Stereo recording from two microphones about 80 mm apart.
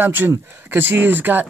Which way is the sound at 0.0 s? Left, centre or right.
Right.